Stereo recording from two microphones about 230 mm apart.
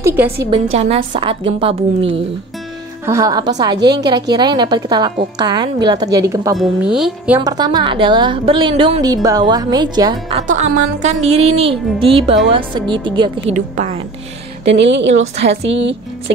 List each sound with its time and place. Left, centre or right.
0.0 s a woman's voice: centre
0.7 s a woman's voice: right
6.6 s speech: centre
7.4 s a woman's voice: centre
10.3 s music: right
11.2 s a woman's voice: right
14.6 s a woman's voice: right